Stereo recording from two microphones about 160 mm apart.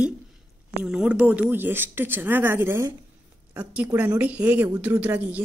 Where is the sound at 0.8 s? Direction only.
5° right (ahead or behind).